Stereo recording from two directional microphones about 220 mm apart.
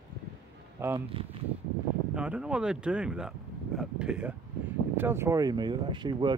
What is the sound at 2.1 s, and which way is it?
Speech, 5° right (ahead or behind).